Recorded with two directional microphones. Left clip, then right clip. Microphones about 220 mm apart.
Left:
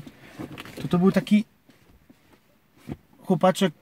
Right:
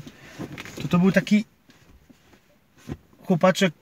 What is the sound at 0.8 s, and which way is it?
Speech, 15° left (ahead or behind).